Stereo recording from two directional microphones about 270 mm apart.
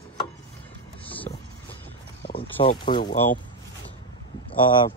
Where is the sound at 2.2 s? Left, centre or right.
Left.